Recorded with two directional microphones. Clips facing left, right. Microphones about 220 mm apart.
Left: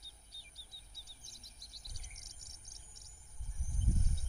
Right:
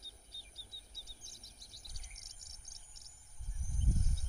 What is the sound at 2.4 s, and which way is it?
Bird vocalization, 25° left (ahead or behind).